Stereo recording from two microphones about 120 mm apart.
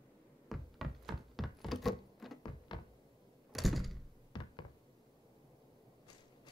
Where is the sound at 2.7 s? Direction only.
35° left (ahead or behind).